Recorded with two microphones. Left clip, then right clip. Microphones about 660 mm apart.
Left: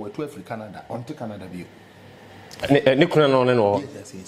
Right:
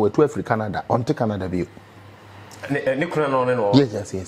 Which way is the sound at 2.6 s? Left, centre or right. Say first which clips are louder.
Left 5 dB; left.